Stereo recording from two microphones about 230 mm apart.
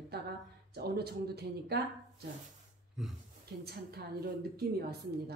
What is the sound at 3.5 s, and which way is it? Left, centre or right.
Speech, right.